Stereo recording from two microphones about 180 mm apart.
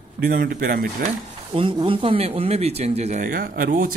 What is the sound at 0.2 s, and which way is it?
Speech, 55° right (ahead or behind).